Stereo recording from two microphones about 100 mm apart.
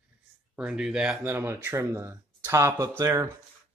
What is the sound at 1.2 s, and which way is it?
Speech, 20° right (ahead or behind).